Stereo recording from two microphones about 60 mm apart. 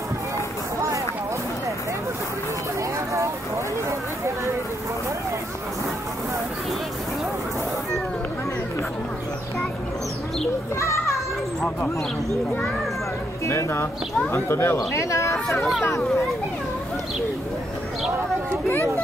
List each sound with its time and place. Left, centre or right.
10.8 s children playing: left
13.5 s speech: left
15.0 s speech: left